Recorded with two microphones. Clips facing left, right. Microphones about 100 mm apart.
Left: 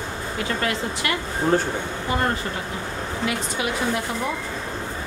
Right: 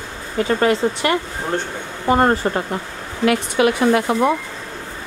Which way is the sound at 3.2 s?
65° right (ahead or behind).